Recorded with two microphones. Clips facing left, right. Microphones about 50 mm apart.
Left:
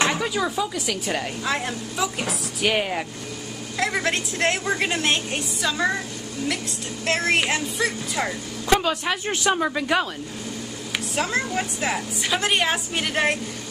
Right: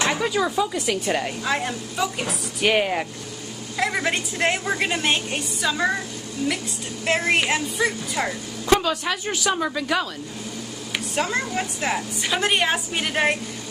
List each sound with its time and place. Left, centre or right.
0.1 s a woman's voice: centre
7.1 s a woman's voice: centre
8.8 s speech: centre
11.1 s a woman's voice: centre